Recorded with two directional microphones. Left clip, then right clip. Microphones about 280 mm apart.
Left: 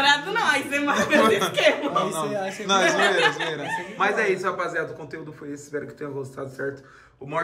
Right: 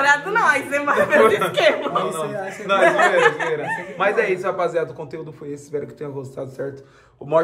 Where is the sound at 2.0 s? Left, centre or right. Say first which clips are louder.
Right 2 dB; centre.